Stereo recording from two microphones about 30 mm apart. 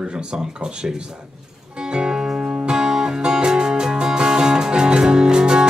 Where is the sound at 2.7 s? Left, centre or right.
Centre.